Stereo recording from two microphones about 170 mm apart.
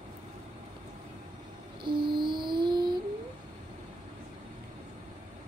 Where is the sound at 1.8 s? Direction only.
30° right (ahead or behind).